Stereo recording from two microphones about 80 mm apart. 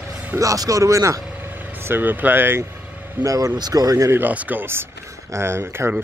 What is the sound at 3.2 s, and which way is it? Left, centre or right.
Speech, right.